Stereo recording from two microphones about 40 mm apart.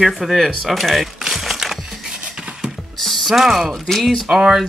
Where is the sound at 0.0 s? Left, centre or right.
Centre.